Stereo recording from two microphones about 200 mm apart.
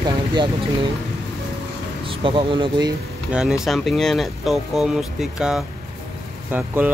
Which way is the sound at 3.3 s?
5° right (ahead or behind).